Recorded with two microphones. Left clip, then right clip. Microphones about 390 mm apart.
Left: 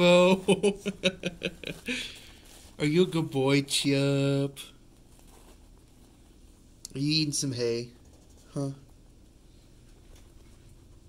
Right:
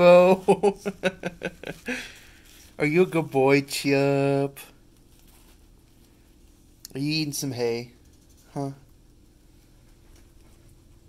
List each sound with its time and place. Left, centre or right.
0.0 s speech: centre
6.8 s speech: centre